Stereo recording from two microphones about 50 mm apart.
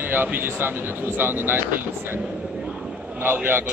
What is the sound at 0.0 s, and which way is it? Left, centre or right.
Speech, right.